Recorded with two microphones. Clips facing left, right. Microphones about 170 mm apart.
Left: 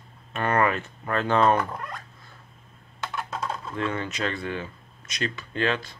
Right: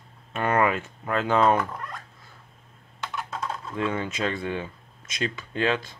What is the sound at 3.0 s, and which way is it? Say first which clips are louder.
Computer keyboard: left 1 dB; 10° left (ahead or behind).